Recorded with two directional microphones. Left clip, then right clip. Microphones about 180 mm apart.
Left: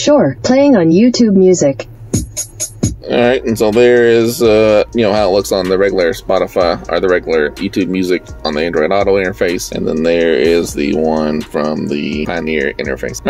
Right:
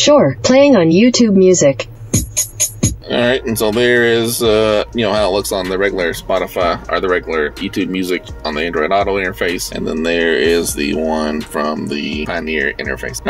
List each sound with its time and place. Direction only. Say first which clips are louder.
0.7 s speech: left 1 dB; 10° left (ahead or behind)
3.1 s speech: left 3 dB; 35° left (ahead or behind)